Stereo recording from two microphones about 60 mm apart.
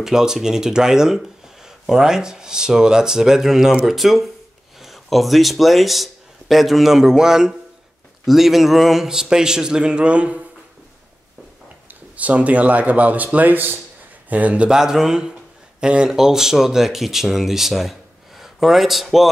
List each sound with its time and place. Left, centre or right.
0.0 s speech: centre
12.2 s a man's voice: right
14.7 s speech: centre